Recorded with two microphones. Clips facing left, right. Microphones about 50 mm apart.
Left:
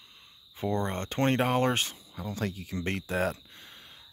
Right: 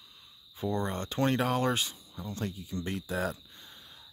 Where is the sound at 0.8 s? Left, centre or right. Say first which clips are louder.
Left 1 dB; left.